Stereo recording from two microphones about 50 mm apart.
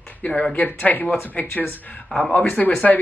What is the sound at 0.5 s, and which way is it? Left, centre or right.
A man's voice, left.